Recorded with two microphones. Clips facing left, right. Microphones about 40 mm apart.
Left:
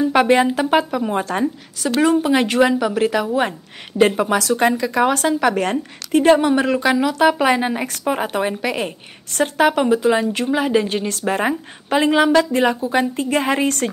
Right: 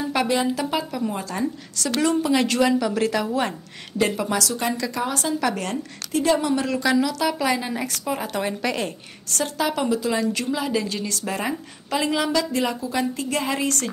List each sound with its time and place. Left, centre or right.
0.3 s speech: left
1.4 s a woman's voice: left
4.0 s a woman's voice: left
5.3 s a woman's voice: left
8.3 s a woman's voice: left
9.4 s a woman's voice: left
13.0 s a woman's voice: left